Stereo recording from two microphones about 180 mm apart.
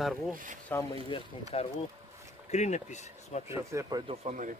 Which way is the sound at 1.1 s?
35° left (ahead or behind).